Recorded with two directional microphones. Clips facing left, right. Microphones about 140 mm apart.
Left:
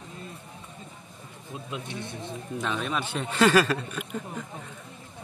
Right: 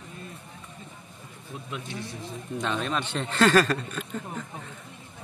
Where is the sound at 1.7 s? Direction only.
20° left (ahead or behind).